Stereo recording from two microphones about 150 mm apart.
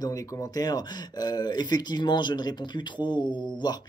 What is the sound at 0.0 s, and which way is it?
Speech, 25° left (ahead or behind).